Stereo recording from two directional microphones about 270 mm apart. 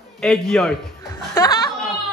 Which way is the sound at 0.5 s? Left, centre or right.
Centre.